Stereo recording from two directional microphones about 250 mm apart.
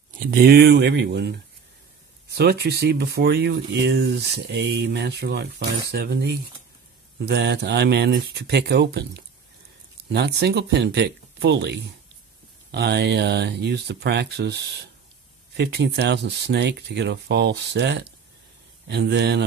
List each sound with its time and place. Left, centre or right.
0.2 s speech: right